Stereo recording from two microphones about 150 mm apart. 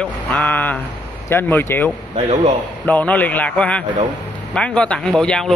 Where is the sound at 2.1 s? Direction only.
45° right (ahead or behind).